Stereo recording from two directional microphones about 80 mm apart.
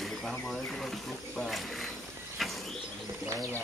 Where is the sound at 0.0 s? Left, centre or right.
Centre.